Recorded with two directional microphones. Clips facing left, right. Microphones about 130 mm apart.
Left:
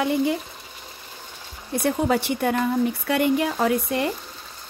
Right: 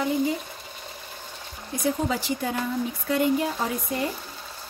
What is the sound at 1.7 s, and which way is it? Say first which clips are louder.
Speech: left 4 dB; 65° left (ahead or behind).